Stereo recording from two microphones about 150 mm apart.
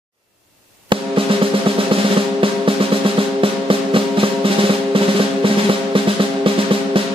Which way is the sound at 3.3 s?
35° right (ahead or behind).